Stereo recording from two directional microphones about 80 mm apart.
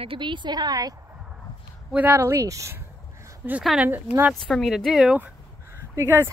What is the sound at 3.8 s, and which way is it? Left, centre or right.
Speech, right.